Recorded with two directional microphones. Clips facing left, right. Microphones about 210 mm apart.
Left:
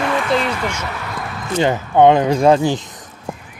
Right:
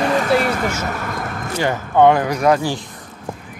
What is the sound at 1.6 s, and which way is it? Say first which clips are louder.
Speech: left 2 dB; 20° left (ahead or behind).